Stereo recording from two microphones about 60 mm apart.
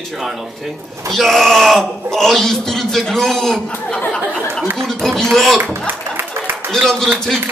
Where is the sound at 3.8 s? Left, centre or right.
Centre.